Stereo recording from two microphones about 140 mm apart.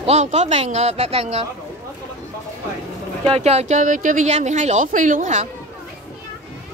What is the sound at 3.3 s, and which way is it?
Speech, 50° right (ahead or behind).